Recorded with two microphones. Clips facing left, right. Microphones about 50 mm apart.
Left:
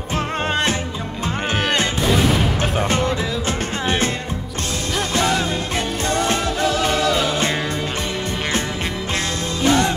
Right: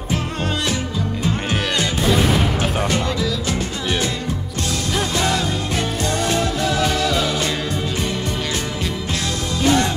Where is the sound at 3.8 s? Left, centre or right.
Left.